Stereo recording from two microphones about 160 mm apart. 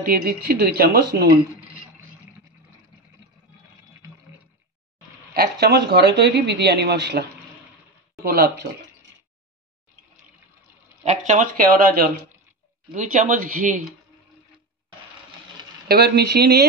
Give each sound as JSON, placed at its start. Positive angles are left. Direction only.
{"t": 0.0, "sound": "speech", "side_deg": -65}
{"t": 5.3, "sound": "speech", "side_deg": -80}
{"t": 11.1, "sound": "speech", "side_deg": -50}
{"t": 15.9, "sound": "speech", "side_deg": -85}